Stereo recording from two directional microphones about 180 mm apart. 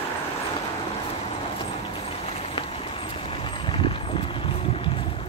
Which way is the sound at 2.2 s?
35° left (ahead or behind).